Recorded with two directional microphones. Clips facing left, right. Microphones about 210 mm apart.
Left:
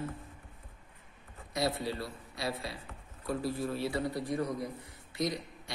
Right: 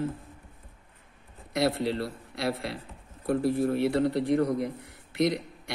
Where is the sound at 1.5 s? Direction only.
65° right (ahead or behind).